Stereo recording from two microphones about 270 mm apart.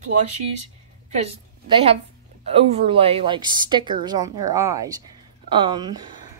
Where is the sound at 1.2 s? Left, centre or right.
Right.